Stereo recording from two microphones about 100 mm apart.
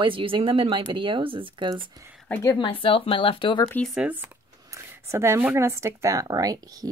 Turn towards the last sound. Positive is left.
turn(degrees=-40)  # may be behind; listen again after turning